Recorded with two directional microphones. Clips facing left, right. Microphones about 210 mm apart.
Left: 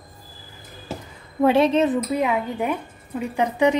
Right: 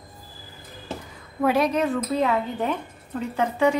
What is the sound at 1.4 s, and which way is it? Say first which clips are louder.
A woman's voice: left 4 dB; 25° left (ahead or behind).